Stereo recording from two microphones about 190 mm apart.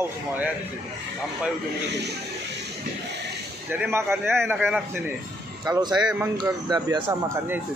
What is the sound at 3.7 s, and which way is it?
Speech, 10° right (ahead or behind).